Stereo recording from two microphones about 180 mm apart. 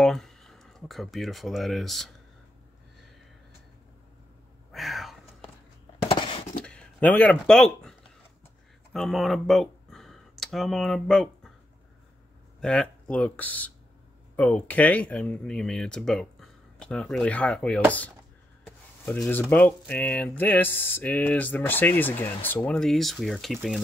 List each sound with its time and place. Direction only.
0.0 s speech: 5° left (ahead or behind)
4.7 s a sound: centre (ahead or behind)
6.0 s a sound: 30° left (ahead or behind)
6.6 s speech: 5° left (ahead or behind)
8.9 s speech: centre (ahead or behind)
12.5 s a sound: 5° left (ahead or behind)
13.1 s speech: 10° left (ahead or behind)
18.7 s rub: 10° left (ahead or behind)
19.5 s speech: 10° left (ahead or behind)